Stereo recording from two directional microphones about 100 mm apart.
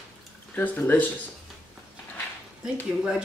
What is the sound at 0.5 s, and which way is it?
Speech, 15° left (ahead or behind).